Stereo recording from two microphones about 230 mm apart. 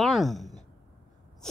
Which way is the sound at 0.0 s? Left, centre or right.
Centre.